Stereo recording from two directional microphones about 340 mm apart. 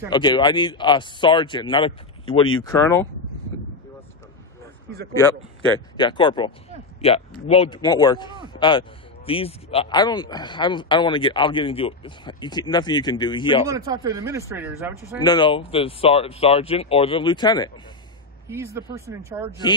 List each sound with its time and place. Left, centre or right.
0.1 s speech: centre
5.9 s speech: centre
13.7 s speech: centre
15.1 s speech: centre
18.5 s speech: centre